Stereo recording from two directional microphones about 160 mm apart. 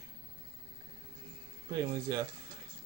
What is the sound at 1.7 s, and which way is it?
Speech, 20° right (ahead or behind).